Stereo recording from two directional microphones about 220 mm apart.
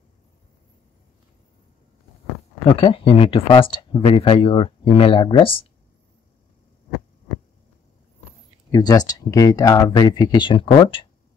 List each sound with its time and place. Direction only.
2.6 s speech: 25° left (ahead or behind)
8.7 s speech: 15° left (ahead or behind)